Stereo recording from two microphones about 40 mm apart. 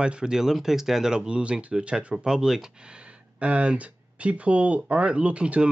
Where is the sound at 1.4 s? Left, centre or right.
Right.